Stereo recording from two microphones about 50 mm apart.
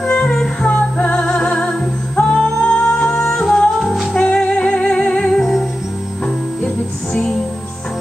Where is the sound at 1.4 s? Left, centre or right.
Left.